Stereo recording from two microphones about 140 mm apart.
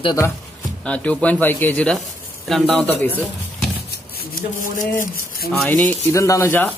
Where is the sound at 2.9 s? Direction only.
10° left (ahead or behind).